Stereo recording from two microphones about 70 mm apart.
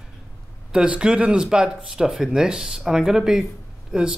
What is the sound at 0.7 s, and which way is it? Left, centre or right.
Speech, centre.